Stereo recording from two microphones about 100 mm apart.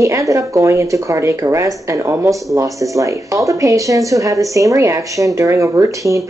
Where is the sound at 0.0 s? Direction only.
35° right (ahead or behind).